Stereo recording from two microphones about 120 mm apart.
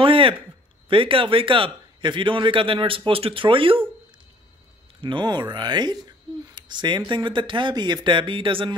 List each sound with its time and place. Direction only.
0.0 s a sound: 45° right (ahead or behind)
0.8 s a man's voice: 45° right (ahead or behind)
5.0 s speech: 40° right (ahead or behind)